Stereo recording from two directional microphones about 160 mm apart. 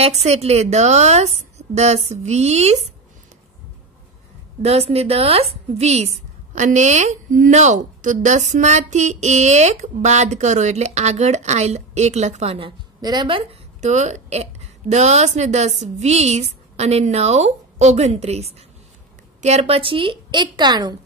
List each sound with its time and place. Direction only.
0.0 s a woman's voice: 40° right (ahead or behind)
4.6 s a woman's voice: 40° right (ahead or behind)
13.7 s a woman's voice: 45° right (ahead or behind); by 20.9 s 25° right (ahead or behind)